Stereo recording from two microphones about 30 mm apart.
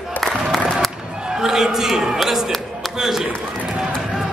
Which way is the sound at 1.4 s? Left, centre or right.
Centre.